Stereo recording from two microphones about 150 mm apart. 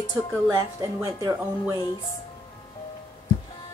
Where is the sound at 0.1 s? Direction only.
20° right (ahead or behind).